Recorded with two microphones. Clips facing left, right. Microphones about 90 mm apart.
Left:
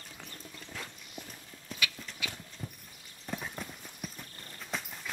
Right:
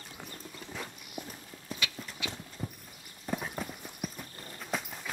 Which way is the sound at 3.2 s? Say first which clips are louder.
Right 4 dB; 10° right (ahead or behind).